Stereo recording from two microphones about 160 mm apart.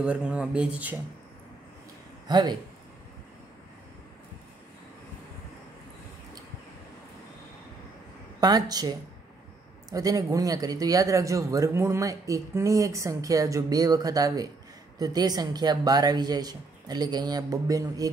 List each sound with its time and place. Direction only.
0.0 s speech: 5° right (ahead or behind)
2.2 s speech: 25° right (ahead or behind)
8.4 s speech: 25° right (ahead or behind)